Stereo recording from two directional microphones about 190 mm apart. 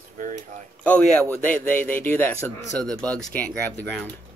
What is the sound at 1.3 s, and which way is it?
Speech, 10° left (ahead or behind).